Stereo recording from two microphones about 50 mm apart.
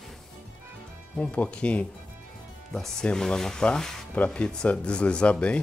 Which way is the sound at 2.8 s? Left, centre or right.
Centre.